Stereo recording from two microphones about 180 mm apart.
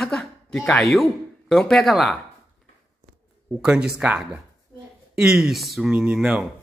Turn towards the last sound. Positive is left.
turn(degrees=0)  # may be behind; listen again after turning